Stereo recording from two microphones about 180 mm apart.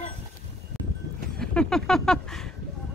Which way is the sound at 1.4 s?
5° left (ahead or behind).